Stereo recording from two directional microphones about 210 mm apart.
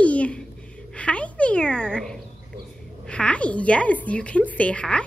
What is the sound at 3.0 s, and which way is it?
A woman's voice, 5° left (ahead or behind).